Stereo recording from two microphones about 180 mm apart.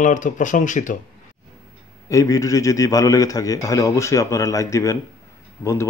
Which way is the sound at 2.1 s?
20° left (ahead or behind).